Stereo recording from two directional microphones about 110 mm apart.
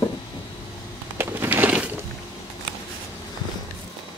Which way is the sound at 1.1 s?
20° right (ahead or behind).